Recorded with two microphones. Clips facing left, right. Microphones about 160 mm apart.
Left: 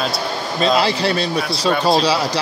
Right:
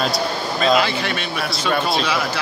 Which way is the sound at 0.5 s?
30° left (ahead or behind).